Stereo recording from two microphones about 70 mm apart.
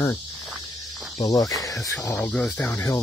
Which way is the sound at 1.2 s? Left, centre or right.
Left.